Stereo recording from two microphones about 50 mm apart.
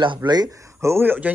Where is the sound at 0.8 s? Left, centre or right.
Right.